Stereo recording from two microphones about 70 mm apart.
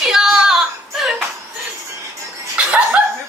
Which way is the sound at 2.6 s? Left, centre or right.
Centre.